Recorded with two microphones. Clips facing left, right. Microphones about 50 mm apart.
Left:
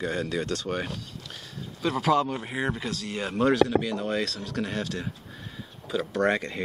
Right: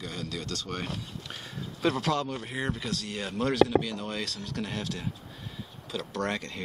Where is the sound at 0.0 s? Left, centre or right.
Left.